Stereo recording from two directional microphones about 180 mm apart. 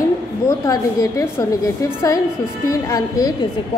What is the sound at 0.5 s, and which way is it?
A woman's voice, 20° left (ahead or behind).